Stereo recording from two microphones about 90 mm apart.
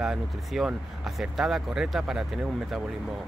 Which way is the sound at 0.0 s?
5° right (ahead or behind).